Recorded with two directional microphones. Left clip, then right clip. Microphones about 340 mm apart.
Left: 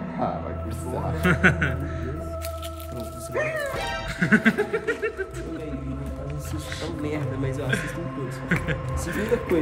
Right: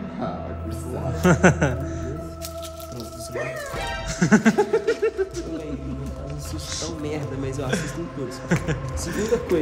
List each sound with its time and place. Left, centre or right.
1.2 s music: centre
3.3 s music: centre
6.8 s music: centre